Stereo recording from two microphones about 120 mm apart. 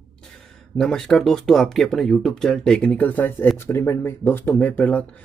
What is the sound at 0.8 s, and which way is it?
Speech, 5° left (ahead or behind).